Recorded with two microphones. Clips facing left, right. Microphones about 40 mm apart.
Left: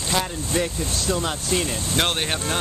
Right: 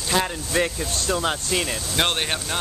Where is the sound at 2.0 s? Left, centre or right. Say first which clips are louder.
Even; centre.